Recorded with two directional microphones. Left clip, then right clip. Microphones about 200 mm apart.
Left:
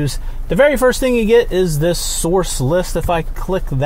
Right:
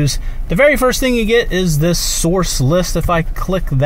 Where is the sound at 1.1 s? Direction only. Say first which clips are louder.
Left 1 dB; 50° left (ahead or behind).